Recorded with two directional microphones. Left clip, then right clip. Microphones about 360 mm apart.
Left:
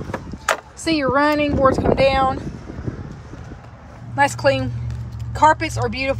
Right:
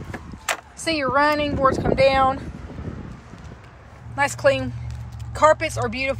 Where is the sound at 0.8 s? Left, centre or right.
Centre.